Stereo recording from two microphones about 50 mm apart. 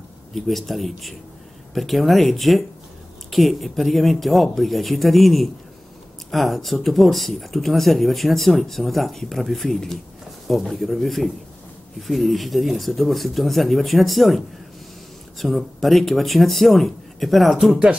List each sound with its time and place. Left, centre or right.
0.3 s speech: centre